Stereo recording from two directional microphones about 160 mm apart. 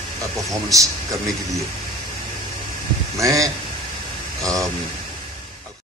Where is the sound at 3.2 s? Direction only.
20° right (ahead or behind).